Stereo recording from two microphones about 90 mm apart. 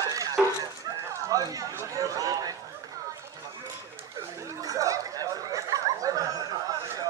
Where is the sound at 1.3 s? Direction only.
40° right (ahead or behind).